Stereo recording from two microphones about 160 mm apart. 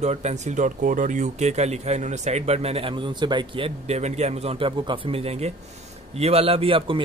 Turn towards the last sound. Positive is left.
turn(degrees=-35)  # may be behind; listen again after turning